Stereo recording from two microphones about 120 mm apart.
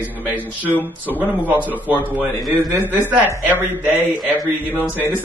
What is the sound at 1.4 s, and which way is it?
A man's voice, 15° right (ahead or behind).